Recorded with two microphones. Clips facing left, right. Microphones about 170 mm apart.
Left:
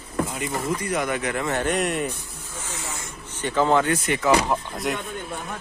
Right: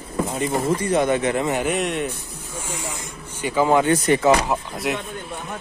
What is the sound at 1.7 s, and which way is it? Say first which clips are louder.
Speech: right 1 dB; centre (ahead or behind).